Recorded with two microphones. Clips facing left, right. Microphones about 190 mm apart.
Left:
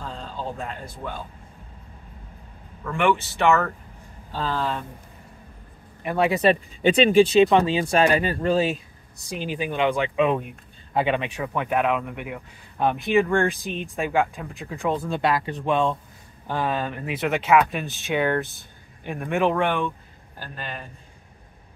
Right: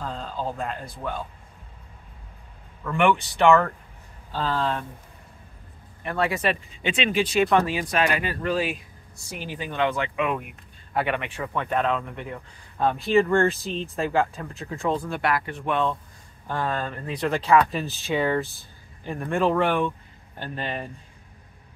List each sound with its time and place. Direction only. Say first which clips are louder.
0.6 s speech: right 2 dB; centre (ahead or behind)
2.9 s speech: right 1 dB; centre (ahead or behind)
6.0 s speech: left 4 dB; 15° left (ahead or behind)
6.4 s speech: left 7 dB; 35° left (ahead or behind)
9.3 s speech: left 5 dB; 15° left (ahead or behind)
14.1 s speech: left 2 dB; centre (ahead or behind)
15.0 s speech: left 2 dB; 20° left (ahead or behind)
16.4 s speech: left 2 dB; 5° left (ahead or behind)
20.3 s speech: right 5 dB; 30° right (ahead or behind)